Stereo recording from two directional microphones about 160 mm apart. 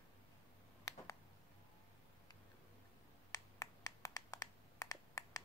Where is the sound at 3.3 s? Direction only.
20° left (ahead or behind).